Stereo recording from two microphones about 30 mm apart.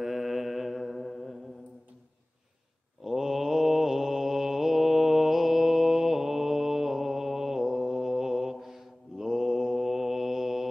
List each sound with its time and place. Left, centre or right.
0.0 s mantra: centre
3.0 s mantra: centre